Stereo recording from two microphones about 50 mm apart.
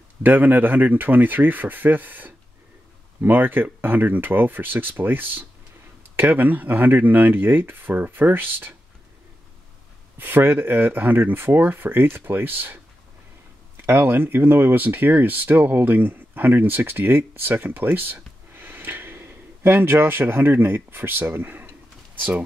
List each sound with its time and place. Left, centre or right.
0.2 s speech: right
10.1 s speech: right
13.8 s speech: right